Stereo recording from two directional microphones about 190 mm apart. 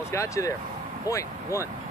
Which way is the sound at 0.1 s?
15° left (ahead or behind).